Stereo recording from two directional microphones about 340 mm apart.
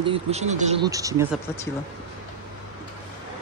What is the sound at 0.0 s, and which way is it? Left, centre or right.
Speech, centre.